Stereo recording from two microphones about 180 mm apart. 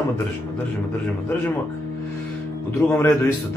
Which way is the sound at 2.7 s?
15° left (ahead or behind).